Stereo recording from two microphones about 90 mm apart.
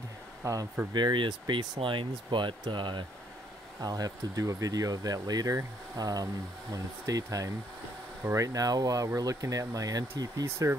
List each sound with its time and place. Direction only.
0.4 s speech: 40° right (ahead or behind)
0.9 s speech: 60° right (ahead or behind)
3.8 s speech: 45° right (ahead or behind)